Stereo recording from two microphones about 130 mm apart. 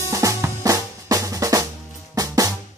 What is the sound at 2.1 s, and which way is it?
Music, 25° right (ahead or behind).